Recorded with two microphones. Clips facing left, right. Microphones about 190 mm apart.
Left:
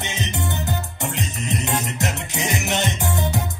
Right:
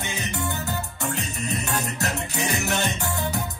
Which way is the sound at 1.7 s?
20° left (ahead or behind).